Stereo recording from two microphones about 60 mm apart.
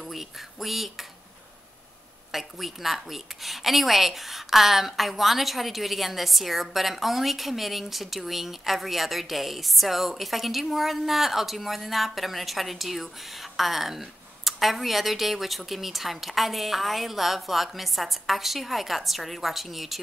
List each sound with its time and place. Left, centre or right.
0.0 s speech: centre
2.3 s speech: centre